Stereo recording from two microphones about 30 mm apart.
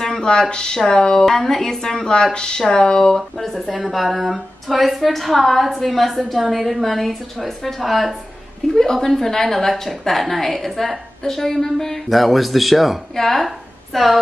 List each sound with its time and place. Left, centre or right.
0.5 s speech: left
1.2 s a woman's voice: centre
2.3 s speech: left
3.2 s a woman's voice: centre
8.7 s a woman's voice: centre
12.1 s a woman's voice: centre
13.1 s a woman's voice: centre
13.5 s a sound: centre